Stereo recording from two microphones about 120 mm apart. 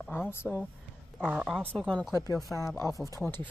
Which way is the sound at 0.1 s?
20° left (ahead or behind).